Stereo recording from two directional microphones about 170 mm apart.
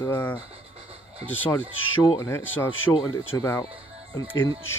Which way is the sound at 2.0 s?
20° left (ahead or behind).